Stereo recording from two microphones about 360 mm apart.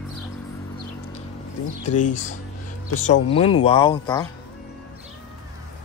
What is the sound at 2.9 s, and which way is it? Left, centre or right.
Speech, centre.